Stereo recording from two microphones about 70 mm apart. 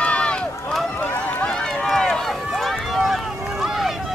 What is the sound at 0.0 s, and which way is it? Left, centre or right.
Run, centre.